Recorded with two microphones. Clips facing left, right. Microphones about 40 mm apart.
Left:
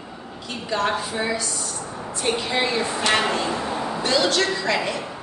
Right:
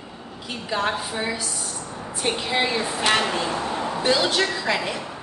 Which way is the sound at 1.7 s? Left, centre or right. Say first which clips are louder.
Left 2 dB; centre.